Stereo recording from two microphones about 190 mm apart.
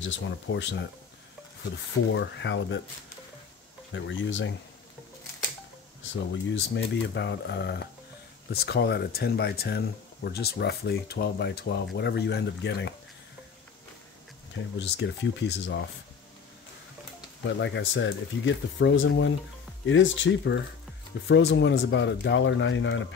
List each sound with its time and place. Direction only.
0.0 s speech: 70° left (ahead or behind)
2.1 s speech: 70° left (ahead or behind)
3.9 s speech: 80° left
6.3 s speech: 70° left (ahead or behind)
14.8 s speech: 65° left (ahead or behind)
17.6 s speech: 70° left (ahead or behind)
21.3 s speech: 65° left (ahead or behind)